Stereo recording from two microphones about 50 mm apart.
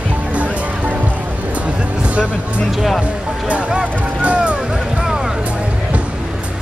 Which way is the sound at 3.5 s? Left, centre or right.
Right.